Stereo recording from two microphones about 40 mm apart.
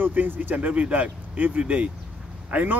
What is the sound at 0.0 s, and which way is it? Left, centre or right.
Speech, right.